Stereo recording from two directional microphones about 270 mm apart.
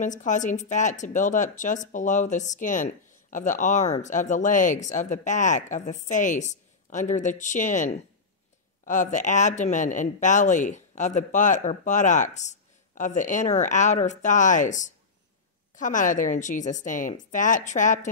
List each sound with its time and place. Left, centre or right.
0.0 s speech: left